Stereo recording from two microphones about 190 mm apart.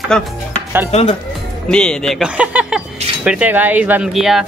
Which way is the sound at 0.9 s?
35° left (ahead or behind).